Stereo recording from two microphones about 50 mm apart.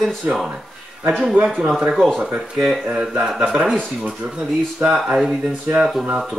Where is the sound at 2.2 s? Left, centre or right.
Centre.